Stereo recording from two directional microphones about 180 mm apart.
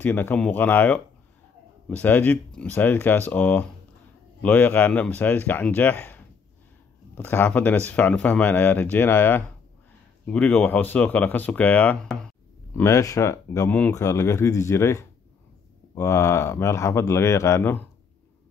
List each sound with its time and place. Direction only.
0.0 s speech: 10° left (ahead or behind)
12.7 s speech: 15° left (ahead or behind)